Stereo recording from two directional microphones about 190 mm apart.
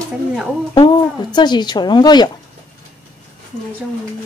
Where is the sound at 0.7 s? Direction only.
25° left (ahead or behind).